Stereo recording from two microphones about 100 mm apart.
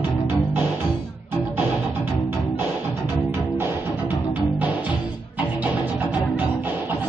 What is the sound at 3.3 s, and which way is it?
Music, 20° right (ahead or behind).